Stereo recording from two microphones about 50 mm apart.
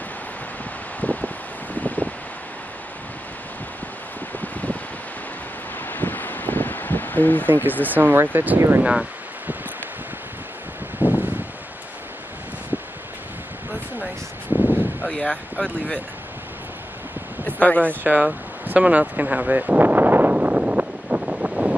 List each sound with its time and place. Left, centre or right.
1.0 s rustling leaves: left
1.8 s wind: left
4.4 s wind: left
5.9 s a sound: left
7.4 s speech: right
8.5 s speech: right
11.0 s rustling leaves: right
14.6 s a sound: left
15.0 s speech: left
17.5 s speech: left
18.0 s a sound: right